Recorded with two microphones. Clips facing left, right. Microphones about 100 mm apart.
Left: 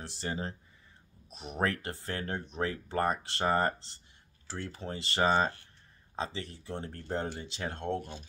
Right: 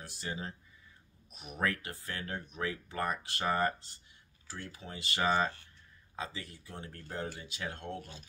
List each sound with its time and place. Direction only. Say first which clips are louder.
0.0 s speech: left 4 dB; 30° left (ahead or behind)